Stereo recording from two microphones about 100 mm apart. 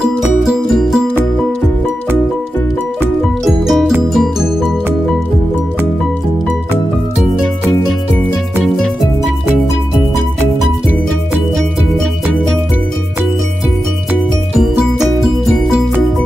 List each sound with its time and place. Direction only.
0.0 s music: 5° right (ahead or behind)
3.4 s music: 5° right (ahead or behind)